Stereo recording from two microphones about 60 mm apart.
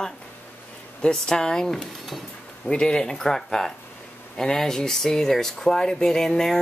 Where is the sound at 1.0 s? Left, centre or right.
Centre.